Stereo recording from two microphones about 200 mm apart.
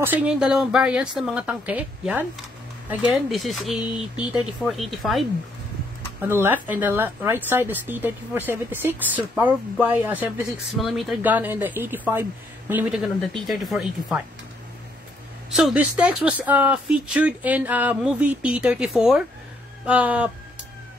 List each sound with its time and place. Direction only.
0.0 s speech: 5° right (ahead or behind)
6.2 s speech: 10° right (ahead or behind)
15.5 s speech: 5° right (ahead or behind)